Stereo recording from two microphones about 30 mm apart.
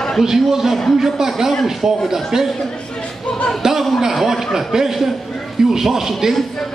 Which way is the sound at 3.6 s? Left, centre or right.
Centre.